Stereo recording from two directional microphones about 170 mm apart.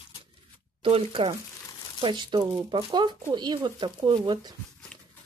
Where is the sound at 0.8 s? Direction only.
35° right (ahead or behind).